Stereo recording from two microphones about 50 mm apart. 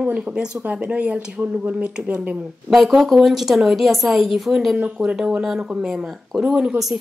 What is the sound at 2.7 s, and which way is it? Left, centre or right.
A woman's voice, centre.